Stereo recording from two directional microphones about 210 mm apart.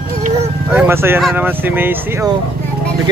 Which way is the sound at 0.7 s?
10° right (ahead or behind).